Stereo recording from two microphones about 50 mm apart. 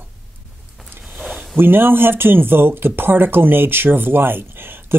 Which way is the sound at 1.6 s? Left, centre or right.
Right.